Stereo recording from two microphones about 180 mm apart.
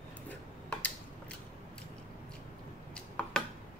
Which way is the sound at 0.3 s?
10° left (ahead or behind).